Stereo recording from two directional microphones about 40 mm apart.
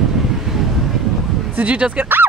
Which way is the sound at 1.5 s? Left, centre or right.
Right.